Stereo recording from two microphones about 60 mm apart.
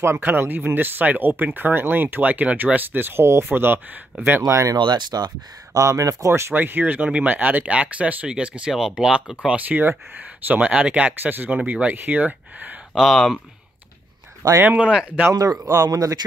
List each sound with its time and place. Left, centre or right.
0.0 s speech: right
3.4 s speech: right
4.5 s speech: right
5.1 s speech: right
5.7 s speech: right
6.5 s speech: right
7.1 s speech: centre
8.7 s speech: centre
9.7 s speech: right
10.7 s speech: centre
12.9 s speech: centre
14.8 s speech: centre
15.3 s speech: right